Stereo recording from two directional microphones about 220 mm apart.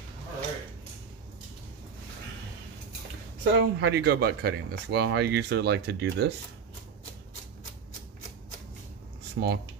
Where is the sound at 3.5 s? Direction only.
50° right (ahead or behind).